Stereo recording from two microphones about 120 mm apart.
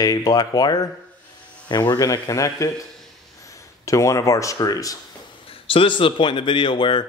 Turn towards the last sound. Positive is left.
turn(degrees=40)  # may be behind; listen again after turning